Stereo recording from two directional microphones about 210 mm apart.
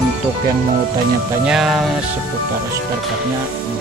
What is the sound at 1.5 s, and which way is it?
Speech, centre (ahead or behind).